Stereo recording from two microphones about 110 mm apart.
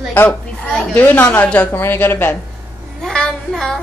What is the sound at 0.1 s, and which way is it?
A woman's voice, 15° left (ahead or behind).